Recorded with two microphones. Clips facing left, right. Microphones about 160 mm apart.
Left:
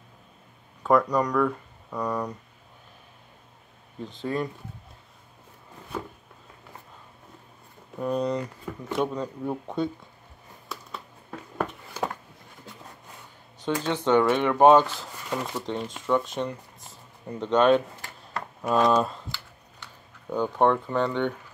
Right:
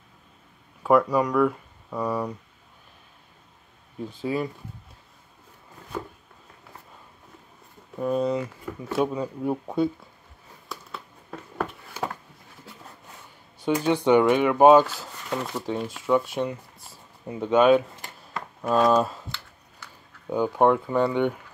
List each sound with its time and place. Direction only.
0.8 s speech: 5° right (ahead or behind)
4.0 s speech: 10° right (ahead or behind)
8.0 s speech: centre (ahead or behind)
10.7 s a sound: centre (ahead or behind)
13.6 s speech: 15° right (ahead or behind)